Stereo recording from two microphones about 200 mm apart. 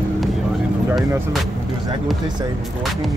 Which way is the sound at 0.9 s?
Centre (ahead or behind).